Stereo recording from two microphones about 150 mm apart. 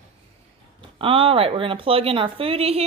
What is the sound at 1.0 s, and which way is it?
A woman's voice, 35° right (ahead or behind).